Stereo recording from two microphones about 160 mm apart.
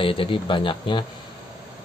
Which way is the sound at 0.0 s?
35° left (ahead or behind).